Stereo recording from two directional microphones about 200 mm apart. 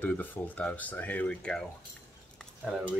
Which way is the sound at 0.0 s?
10° left (ahead or behind).